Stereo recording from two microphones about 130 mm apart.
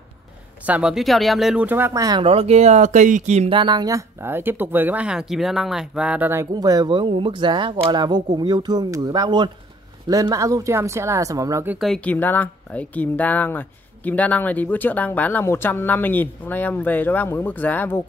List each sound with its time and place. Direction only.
0.7 s speech: 10° right (ahead or behind)
2.0 s speech: 30° right (ahead or behind)
2.2 s speech: 50° right (ahead or behind); by 3.4 s 65° right (ahead or behind)
3.4 s speech: 40° right (ahead or behind); by 6.5 s 15° right (ahead or behind)
6.5 s speech: 30° right (ahead or behind)
11.8 s speech: 5° left (ahead or behind)